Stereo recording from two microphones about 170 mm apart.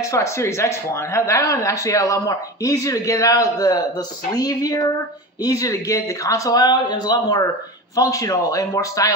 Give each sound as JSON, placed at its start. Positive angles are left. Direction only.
{"t": 0.0, "sound": "speech", "side_deg": 20}